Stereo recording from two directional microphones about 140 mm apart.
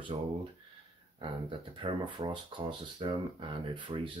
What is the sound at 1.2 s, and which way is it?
Speech, 35° right (ahead or behind).